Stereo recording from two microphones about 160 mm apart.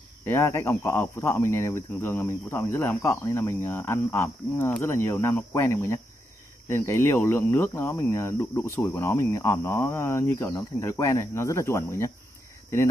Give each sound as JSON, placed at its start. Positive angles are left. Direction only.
{"t": 0.2, "sound": "speech", "side_deg": 15}